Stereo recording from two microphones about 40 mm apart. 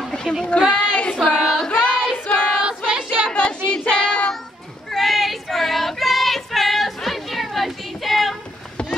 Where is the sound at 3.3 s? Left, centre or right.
Left.